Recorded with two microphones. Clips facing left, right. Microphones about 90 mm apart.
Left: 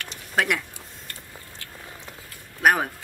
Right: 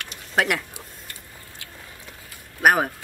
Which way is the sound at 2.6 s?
5° right (ahead or behind).